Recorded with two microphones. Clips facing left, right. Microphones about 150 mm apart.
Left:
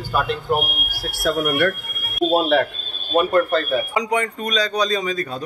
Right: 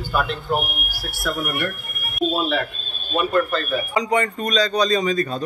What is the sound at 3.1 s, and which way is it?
Speech, 45° left (ahead or behind).